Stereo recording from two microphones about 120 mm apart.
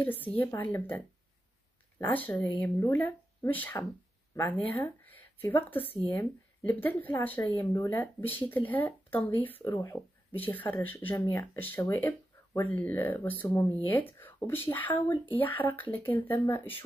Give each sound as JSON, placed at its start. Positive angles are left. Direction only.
{"t": 0.0, "sound": "speech", "side_deg": 15}